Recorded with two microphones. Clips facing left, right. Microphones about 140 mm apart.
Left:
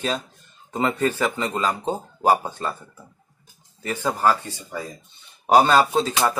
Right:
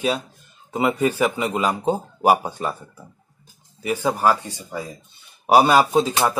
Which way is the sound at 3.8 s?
10° right (ahead or behind).